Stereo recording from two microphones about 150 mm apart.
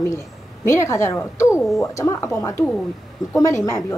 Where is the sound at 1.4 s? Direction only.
5° right (ahead or behind).